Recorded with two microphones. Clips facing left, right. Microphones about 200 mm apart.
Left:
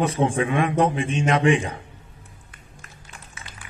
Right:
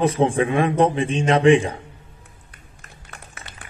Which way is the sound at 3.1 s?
65° right (ahead or behind).